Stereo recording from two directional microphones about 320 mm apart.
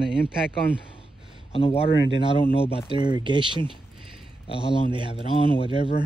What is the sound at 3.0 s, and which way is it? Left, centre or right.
Speech, centre.